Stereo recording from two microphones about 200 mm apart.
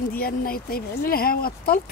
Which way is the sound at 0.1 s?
45° left (ahead or behind).